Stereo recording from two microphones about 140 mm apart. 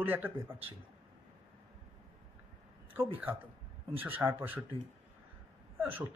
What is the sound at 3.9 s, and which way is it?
Speech, 15° right (ahead or behind).